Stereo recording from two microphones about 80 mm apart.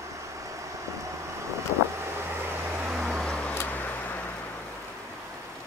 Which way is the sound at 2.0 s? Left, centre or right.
Right.